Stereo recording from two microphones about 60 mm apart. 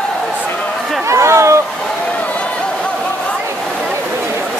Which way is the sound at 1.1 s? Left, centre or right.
Right.